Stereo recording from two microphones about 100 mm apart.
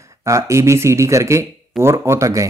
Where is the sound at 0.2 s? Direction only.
30° right (ahead or behind).